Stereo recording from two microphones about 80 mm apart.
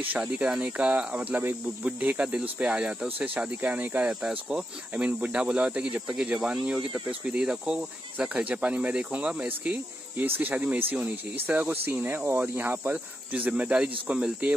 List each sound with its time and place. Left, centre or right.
0.2 s speech: centre
4.0 s speech: centre
10.1 s speech: right